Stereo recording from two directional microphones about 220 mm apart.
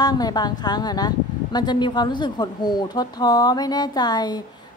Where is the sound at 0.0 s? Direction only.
20° left (ahead or behind).